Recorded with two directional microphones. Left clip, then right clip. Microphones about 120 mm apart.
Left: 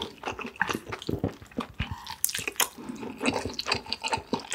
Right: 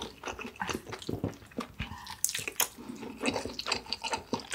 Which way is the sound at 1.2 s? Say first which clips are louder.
Left 4 dB; 45° left (ahead or behind).